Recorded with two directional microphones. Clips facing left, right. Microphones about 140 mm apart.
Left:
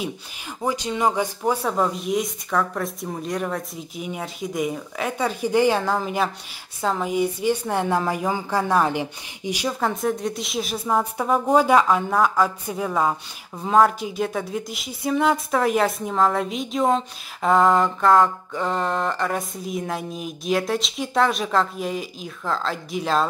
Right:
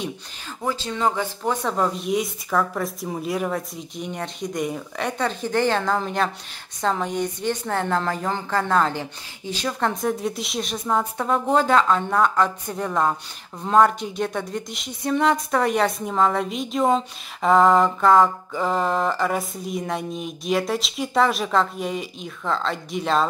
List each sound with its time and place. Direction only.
0.6 s a woman's voice: 15° left (ahead or behind)